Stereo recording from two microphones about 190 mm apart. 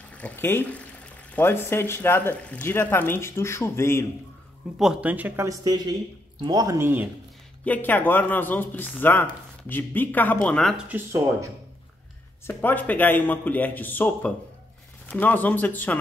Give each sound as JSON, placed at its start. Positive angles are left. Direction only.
{"t": 0.1, "sound": "speech", "side_deg": 10}
{"t": 4.7, "sound": "speech", "side_deg": -5}
{"t": 7.6, "sound": "speech", "side_deg": 10}
{"t": 12.4, "sound": "speech", "side_deg": 10}